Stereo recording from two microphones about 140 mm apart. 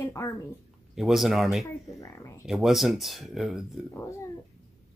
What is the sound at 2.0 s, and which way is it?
Speech, 25° left (ahead or behind).